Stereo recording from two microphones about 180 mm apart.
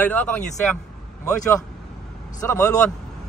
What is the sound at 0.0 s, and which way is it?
Speech, 10° left (ahead or behind).